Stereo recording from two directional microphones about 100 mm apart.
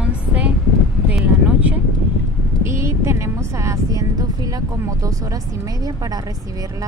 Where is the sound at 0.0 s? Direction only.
10° right (ahead or behind).